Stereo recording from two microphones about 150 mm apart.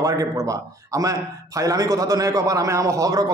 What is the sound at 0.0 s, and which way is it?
A man's voice, 25° right (ahead or behind).